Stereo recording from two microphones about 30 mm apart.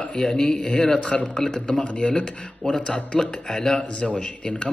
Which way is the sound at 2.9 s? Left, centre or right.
Left.